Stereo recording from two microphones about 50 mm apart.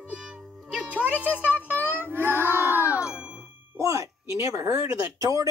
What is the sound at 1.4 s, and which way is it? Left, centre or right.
Music, left.